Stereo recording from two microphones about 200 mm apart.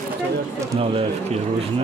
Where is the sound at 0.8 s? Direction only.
30° right (ahead or behind).